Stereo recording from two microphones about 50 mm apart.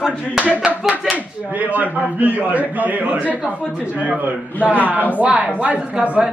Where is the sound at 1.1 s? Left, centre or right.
Right.